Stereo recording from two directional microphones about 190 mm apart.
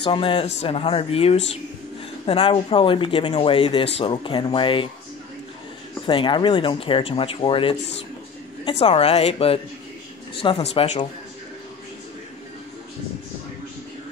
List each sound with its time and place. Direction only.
0.0 s speech: 25° left (ahead or behind)
6.0 s speech: 25° left (ahead or behind)